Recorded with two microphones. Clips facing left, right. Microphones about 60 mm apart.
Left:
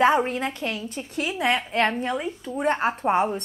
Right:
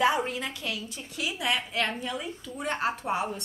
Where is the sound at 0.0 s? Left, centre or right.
Left.